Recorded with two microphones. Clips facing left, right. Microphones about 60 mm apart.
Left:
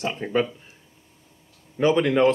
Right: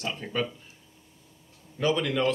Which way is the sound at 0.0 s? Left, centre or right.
Left.